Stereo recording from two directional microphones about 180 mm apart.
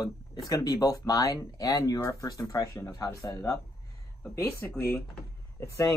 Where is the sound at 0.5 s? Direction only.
20° left (ahead or behind).